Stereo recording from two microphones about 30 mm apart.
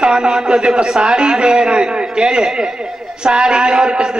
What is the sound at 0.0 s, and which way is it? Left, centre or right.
A man's voice, right.